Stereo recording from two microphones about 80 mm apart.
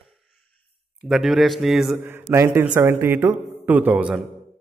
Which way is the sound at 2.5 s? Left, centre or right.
Centre.